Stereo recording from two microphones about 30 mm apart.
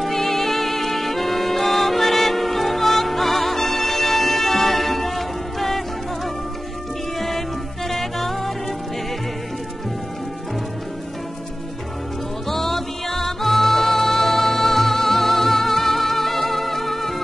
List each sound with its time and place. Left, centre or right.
0.0 s music: centre
12.4 s music: centre